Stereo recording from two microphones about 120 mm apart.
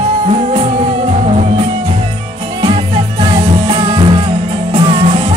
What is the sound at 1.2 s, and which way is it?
Music, 55° right (ahead or behind).